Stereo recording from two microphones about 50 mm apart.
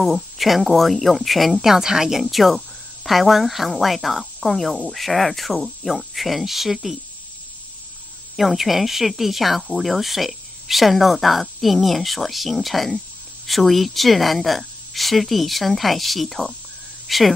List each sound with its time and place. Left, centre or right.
0.0 s a woman's voice: centre
8.4 s a woman's voice: centre